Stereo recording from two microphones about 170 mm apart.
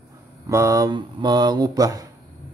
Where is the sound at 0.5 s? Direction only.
15° right (ahead or behind).